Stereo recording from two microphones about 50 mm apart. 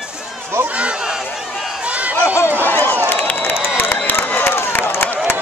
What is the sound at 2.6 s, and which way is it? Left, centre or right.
Speech, left.